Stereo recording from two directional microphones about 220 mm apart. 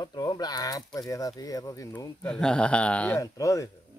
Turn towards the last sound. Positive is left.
turn(degrees=15)  # may be behind; listen again after turning